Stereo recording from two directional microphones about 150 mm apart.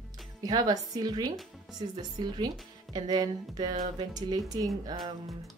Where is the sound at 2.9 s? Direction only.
25° right (ahead or behind).